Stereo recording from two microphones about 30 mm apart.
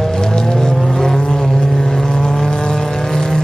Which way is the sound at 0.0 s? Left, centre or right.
Centre.